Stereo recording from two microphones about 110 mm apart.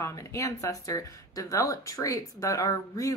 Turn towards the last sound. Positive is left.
turn(degrees=30)  # may be behind; listen again after turning